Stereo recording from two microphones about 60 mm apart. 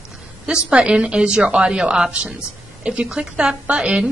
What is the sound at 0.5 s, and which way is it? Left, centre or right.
A woman's voice, centre.